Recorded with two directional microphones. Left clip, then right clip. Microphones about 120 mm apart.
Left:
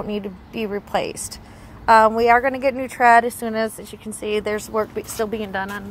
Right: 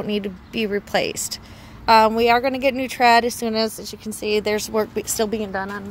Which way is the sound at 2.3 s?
55° right (ahead or behind).